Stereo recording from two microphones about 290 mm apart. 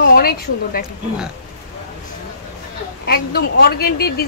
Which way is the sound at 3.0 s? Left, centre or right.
Left.